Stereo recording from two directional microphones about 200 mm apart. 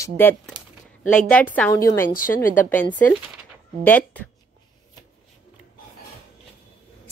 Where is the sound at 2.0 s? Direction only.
45° left (ahead or behind).